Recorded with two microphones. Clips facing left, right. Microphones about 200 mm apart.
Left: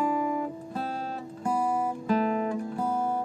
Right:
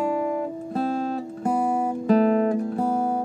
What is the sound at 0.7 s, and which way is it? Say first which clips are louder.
Music: right 12 dB; 40° right (ahead or behind).